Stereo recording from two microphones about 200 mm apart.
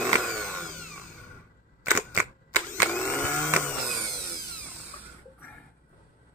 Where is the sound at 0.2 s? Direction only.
5° left (ahead or behind).